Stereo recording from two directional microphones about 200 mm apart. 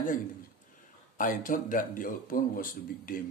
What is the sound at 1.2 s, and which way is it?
A man's voice, 40° left (ahead or behind).